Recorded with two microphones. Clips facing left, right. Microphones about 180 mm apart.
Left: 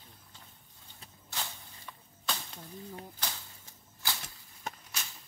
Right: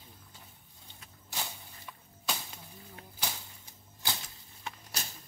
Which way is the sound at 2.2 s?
10° right (ahead or behind).